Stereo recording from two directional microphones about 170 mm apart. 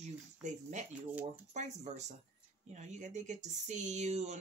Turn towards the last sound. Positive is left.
turn(degrees=-40)  # may be behind; listen again after turning